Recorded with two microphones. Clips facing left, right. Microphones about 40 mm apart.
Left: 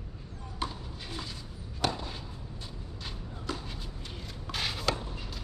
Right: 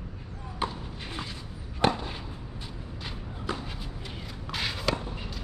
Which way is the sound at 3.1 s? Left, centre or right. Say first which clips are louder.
Right 3 dB; right.